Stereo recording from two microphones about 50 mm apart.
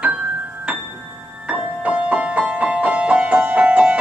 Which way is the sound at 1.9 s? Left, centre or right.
Right.